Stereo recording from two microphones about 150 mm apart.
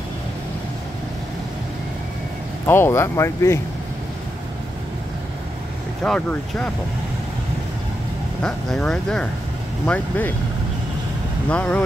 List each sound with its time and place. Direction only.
2.6 s speech: 15° left (ahead or behind)
6.0 s speech: 5° left (ahead or behind)
8.4 s speech: 5° left (ahead or behind)
11.4 s speech: 10° left (ahead or behind)